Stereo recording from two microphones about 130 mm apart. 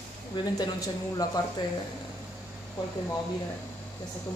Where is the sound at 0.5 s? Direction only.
30° left (ahead or behind).